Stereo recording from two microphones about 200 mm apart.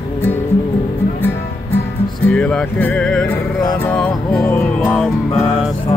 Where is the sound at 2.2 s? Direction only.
5° left (ahead or behind).